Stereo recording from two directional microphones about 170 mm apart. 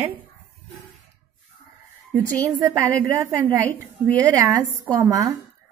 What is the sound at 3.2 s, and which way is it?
A woman's voice, 15° right (ahead or behind).